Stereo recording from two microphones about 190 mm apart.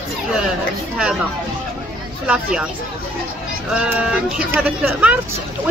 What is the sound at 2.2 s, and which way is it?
Speech, 5° right (ahead or behind).